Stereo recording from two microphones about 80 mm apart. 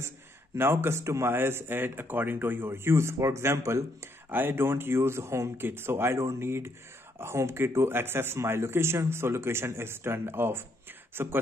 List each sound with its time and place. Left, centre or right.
0.6 s speech: right